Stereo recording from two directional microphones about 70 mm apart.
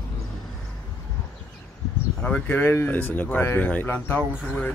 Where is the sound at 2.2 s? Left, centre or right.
Left.